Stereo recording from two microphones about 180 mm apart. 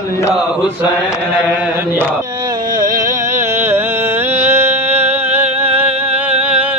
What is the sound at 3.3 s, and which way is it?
Music, 15° right (ahead or behind).